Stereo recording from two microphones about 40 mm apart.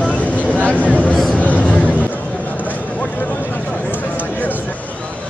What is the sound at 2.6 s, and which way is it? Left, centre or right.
Vehicle, left.